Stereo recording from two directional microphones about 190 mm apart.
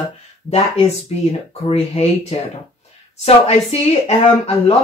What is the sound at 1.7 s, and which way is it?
Speech, 35° left (ahead or behind).